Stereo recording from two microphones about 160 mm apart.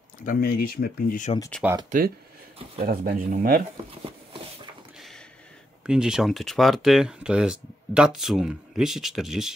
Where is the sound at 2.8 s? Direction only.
65° right (ahead or behind).